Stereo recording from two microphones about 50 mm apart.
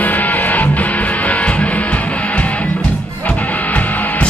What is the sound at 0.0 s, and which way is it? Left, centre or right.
Music, left.